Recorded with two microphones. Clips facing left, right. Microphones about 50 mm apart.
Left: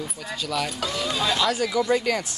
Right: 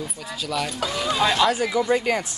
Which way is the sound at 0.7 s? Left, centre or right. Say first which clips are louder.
Right 3 dB; centre.